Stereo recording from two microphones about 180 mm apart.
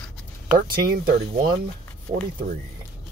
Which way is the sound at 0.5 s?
55° right (ahead or behind).